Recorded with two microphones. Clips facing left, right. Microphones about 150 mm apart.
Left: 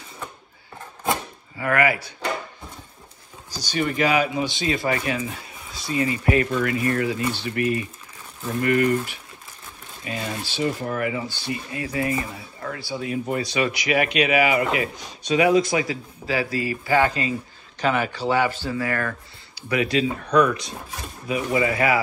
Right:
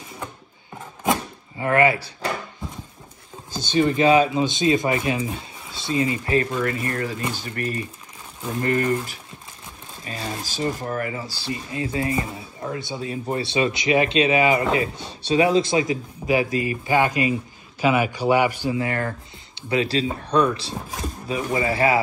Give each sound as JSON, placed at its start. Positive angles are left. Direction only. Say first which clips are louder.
{"t": 1.6, "sound": "speech", "louder": "right 3 dB", "side_deg": -25}
{"t": 3.5, "sound": "speech", "louder": "right 4 dB", "side_deg": -25}